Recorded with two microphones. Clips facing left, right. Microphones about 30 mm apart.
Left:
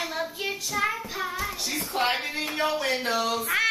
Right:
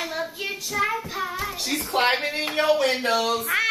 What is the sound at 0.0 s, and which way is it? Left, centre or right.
Child singing, centre.